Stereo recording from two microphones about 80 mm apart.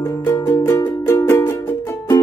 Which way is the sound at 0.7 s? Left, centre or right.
Left.